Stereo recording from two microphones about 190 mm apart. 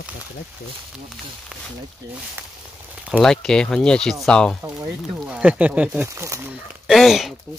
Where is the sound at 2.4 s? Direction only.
10° right (ahead or behind).